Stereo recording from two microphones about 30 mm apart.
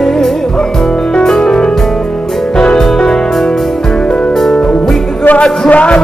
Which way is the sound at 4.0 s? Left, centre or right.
Left.